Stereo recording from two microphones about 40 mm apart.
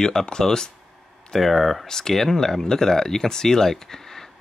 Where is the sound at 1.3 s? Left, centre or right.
Centre.